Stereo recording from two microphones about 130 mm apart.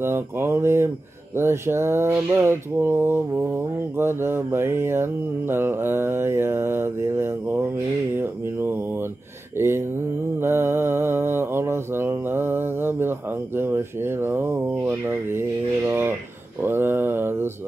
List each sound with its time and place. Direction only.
0.0 s mantra: 20° right (ahead or behind)
8.2 s speech: 15° right (ahead or behind)
9.6 s mantra: 20° right (ahead or behind)
13.6 s speech: 15° right (ahead or behind)
16.6 s mantra: 15° right (ahead or behind)